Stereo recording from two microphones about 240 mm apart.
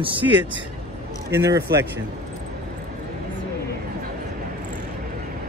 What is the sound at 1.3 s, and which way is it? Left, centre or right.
Speech, centre.